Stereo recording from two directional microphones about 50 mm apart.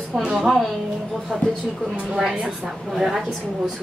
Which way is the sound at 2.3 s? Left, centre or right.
Centre.